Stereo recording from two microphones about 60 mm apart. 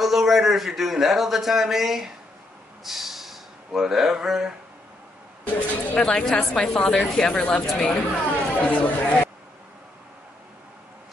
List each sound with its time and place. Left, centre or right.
0.0 s a man's voice: centre
2.8 s gasp: centre
5.9 s speech: centre